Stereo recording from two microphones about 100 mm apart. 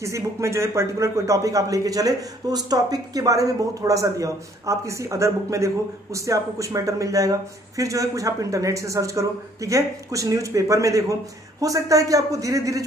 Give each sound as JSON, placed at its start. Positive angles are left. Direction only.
{"t": 0.0, "sound": "a man's voice", "side_deg": -30}